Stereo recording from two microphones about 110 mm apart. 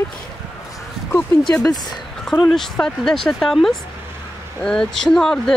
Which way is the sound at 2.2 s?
Centre (ahead or behind).